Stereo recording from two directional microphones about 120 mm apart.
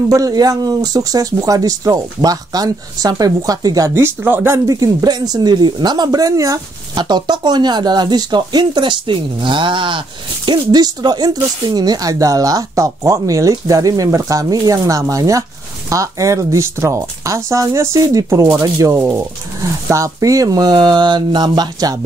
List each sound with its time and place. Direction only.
0.1 s speech: 30° right (ahead or behind)
4.6 s speech: 30° right (ahead or behind)